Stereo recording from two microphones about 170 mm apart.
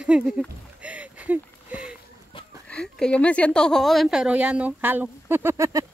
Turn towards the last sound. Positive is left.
turn(degrees=-15)  # may be behind; listen again after turning